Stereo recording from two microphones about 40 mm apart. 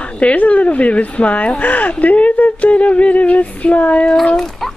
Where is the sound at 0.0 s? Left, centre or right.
Left.